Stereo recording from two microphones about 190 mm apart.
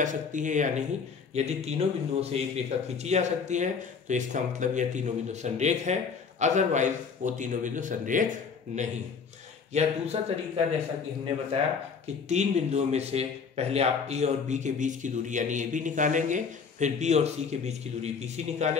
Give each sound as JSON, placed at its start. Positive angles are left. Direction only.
{"t": 0.0, "sound": "speech", "side_deg": -40}
{"t": 12.3, "sound": "speech", "side_deg": -35}